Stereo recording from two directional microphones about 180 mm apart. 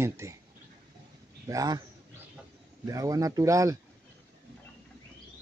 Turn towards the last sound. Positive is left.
turn(degrees=-15)  # may be behind; listen again after turning